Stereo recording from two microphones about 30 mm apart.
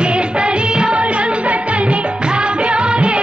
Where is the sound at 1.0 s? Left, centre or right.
Right.